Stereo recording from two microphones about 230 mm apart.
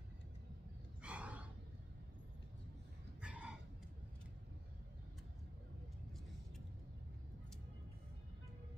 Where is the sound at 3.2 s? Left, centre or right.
Centre.